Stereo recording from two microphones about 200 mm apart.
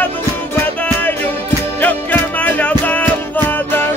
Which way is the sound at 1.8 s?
10° left (ahead or behind).